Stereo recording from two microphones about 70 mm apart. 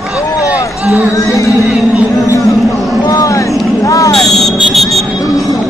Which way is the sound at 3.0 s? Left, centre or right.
Left.